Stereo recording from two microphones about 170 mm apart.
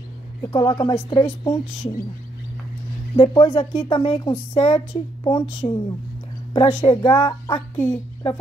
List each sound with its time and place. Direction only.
0.4 s a woman's voice: 25° left (ahead or behind)
3.2 s a woman's voice: 30° left (ahead or behind)
7.2 s speech: 20° left (ahead or behind)